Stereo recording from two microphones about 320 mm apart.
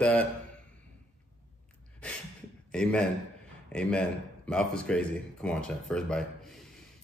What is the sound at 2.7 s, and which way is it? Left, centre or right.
Speech, centre.